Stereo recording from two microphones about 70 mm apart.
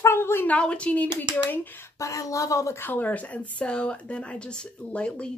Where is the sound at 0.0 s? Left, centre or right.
Left.